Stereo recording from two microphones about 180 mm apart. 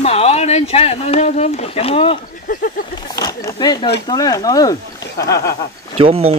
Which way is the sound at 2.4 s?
50° left (ahead or behind).